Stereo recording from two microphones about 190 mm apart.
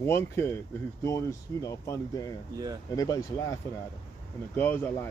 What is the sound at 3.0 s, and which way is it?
Speech, 20° left (ahead or behind).